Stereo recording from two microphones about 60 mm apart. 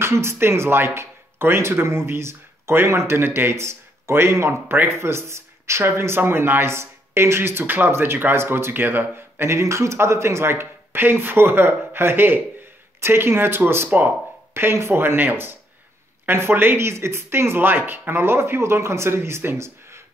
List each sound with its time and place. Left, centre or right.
0.0 s speech: right